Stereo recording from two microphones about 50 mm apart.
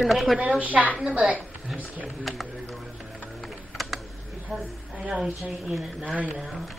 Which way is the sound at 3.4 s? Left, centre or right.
Centre.